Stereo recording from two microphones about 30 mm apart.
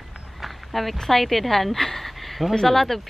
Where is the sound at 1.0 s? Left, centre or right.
Centre.